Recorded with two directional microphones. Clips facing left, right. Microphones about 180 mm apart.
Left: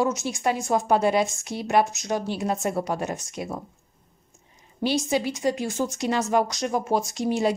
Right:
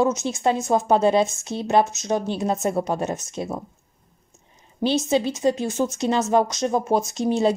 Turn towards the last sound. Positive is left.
turn(degrees=-25)  # may be behind; listen again after turning